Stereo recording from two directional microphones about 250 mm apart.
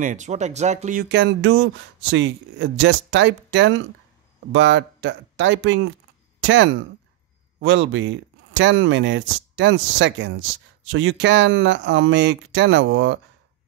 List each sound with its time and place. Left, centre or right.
0.0 s speech: right
1.0 s speech: right